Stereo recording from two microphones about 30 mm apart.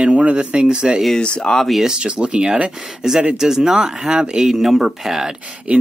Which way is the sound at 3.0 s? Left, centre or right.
Centre.